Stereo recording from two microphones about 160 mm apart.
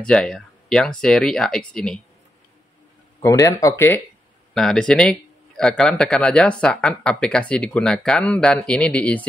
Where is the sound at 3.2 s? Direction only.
20° left (ahead or behind).